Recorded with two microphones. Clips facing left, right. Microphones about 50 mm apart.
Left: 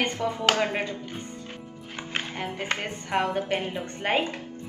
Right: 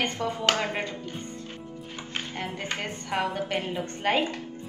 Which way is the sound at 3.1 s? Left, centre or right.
Centre.